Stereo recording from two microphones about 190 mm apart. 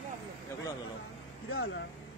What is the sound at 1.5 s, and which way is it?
Speech, 85° left.